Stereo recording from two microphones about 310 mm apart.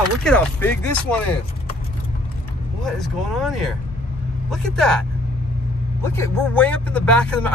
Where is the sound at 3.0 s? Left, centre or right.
Centre.